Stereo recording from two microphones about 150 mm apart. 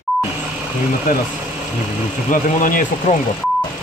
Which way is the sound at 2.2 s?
60° left (ahead or behind).